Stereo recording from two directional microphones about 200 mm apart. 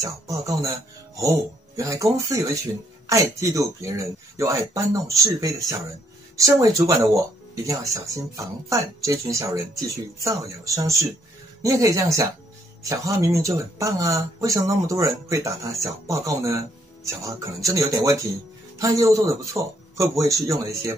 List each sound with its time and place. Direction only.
0.0 s speech: 15° right (ahead or behind)